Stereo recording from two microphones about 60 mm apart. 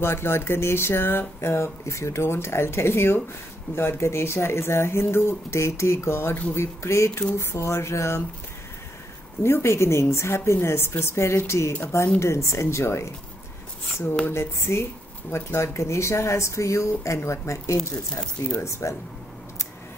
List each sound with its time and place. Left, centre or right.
0.0 s speech: left
9.4 s speech: left
14.3 s speech: left